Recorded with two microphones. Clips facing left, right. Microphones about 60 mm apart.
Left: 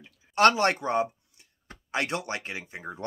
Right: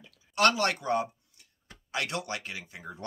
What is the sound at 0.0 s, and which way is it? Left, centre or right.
Speech, left.